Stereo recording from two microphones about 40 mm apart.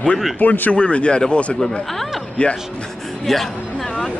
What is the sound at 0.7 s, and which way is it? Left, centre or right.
Speech, left.